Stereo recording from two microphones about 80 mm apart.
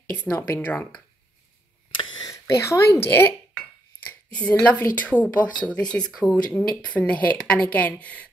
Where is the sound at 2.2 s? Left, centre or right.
Left.